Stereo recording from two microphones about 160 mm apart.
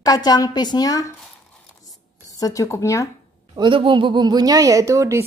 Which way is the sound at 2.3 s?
20° left (ahead or behind).